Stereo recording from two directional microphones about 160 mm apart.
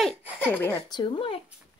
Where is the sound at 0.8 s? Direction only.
30° left (ahead or behind).